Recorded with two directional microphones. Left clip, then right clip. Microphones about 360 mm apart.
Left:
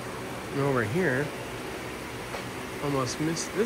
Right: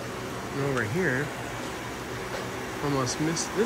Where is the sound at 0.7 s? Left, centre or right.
Centre.